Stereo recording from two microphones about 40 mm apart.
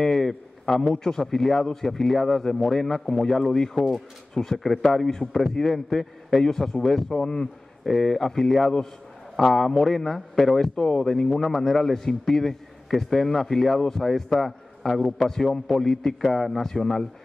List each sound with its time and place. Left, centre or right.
0.0 s a man's voice: centre
11.2 s a man's voice: centre